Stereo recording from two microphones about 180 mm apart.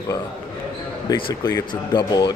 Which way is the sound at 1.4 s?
20° left (ahead or behind).